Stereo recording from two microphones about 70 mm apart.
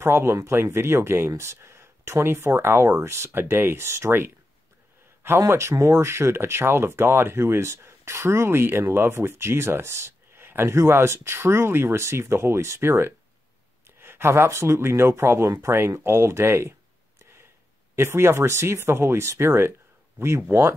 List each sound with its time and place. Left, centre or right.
0.0 s speech: right
5.5 s speech: right
17.9 s speech: right